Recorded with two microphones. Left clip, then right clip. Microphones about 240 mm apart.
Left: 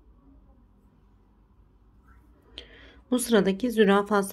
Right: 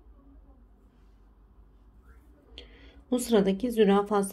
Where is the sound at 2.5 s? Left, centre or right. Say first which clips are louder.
Left 4 dB; centre.